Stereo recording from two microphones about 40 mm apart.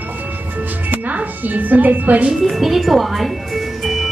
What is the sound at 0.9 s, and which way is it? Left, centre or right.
Music, right.